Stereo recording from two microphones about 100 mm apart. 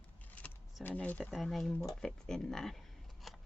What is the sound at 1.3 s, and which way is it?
Speech, centre (ahead or behind).